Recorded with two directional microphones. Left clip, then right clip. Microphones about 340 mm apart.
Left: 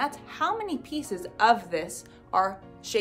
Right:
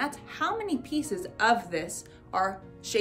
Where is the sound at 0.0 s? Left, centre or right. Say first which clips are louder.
Left 2 dB; centre.